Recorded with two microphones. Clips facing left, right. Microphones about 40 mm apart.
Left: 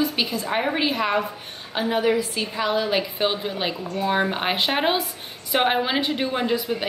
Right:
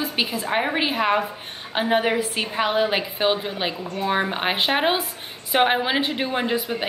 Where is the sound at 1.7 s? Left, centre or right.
Right.